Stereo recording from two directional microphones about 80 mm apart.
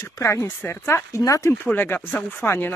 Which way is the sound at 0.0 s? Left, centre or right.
Left.